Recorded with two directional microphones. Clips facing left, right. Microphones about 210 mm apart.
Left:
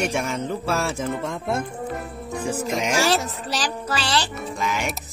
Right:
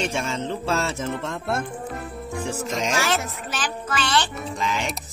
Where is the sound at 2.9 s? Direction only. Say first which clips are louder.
Left 4 dB; 35° left (ahead or behind).